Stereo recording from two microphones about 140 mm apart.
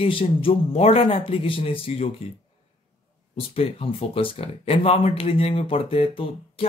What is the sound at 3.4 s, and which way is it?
Speech, 45° left (ahead or behind).